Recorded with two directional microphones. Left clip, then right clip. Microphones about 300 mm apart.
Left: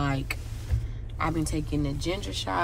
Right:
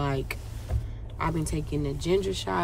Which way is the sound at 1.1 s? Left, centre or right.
Centre.